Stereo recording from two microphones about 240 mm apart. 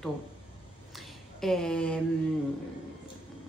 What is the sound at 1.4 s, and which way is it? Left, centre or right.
Speech, centre.